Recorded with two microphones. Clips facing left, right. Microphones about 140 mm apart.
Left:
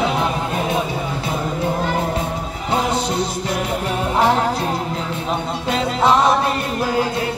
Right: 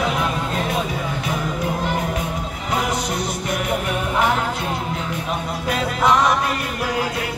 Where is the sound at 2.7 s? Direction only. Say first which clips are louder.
Left 3 dB; 30° left (ahead or behind).